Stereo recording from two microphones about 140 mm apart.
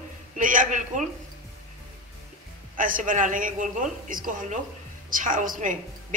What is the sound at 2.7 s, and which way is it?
A woman's voice, 75° right (ahead or behind).